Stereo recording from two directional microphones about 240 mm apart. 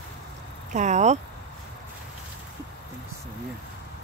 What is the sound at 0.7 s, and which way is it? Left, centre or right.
Speech, right.